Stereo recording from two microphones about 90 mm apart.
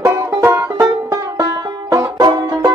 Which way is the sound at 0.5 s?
25° right (ahead or behind).